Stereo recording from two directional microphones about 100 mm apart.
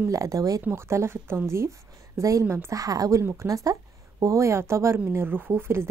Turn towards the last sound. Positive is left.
turn(degrees=-25)  # may be behind; listen again after turning